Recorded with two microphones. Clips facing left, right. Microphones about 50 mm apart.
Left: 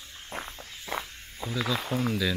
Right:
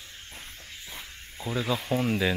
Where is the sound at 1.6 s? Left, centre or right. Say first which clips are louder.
Left 1 dB; left.